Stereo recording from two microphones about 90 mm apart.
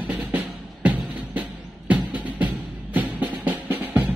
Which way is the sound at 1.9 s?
15° right (ahead or behind).